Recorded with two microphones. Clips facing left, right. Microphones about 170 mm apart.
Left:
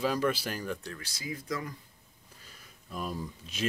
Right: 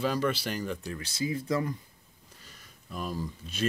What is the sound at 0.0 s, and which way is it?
Speech, 5° left (ahead or behind).